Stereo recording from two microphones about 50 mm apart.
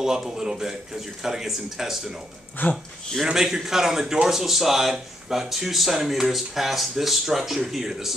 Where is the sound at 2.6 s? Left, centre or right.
Left.